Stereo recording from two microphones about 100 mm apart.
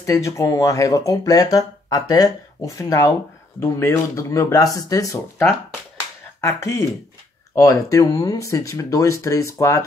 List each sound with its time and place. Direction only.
0.0 s speech: 30° left (ahead or behind)
6.4 s speech: 30° left (ahead or behind)